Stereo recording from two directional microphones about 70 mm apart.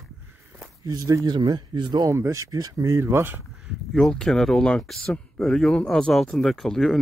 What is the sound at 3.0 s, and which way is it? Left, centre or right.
Speech, right.